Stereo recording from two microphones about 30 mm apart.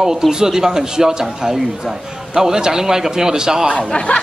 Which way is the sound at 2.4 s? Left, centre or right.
Centre.